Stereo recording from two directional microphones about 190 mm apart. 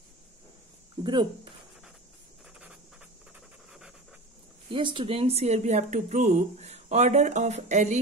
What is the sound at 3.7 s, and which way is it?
Pant, 5° right (ahead or behind).